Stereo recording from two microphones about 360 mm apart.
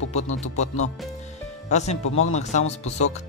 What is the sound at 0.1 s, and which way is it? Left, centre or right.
Speech, centre.